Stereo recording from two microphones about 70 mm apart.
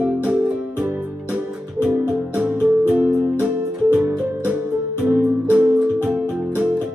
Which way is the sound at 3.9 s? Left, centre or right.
Right.